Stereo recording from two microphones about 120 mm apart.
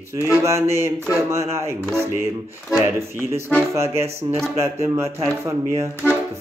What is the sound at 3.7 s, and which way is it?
Speech, 20° right (ahead or behind).